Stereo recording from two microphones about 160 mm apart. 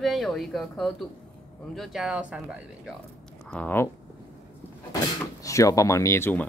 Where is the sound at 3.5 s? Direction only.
10° left (ahead or behind).